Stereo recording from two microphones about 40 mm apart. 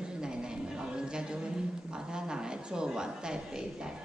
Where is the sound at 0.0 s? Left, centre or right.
Centre.